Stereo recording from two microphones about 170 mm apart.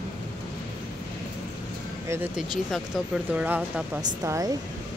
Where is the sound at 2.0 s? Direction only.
15° right (ahead or behind).